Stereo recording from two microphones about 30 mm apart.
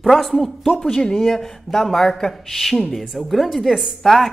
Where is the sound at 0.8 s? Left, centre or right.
Left.